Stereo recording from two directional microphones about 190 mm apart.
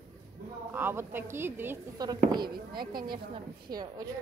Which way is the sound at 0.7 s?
10° right (ahead or behind).